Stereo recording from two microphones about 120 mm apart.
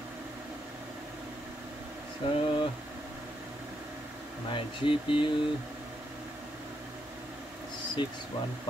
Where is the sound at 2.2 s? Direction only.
45° left (ahead or behind).